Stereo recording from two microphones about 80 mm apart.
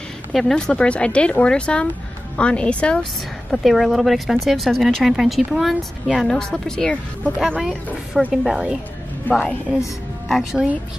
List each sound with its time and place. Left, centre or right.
0.3 s speech: centre
3.5 s speech: centre
7.5 s speech: centre
9.3 s a woman's voice: left
10.2 s speech: centre